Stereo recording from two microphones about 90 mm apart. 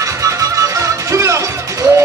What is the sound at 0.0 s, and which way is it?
Music, 35° right (ahead or behind).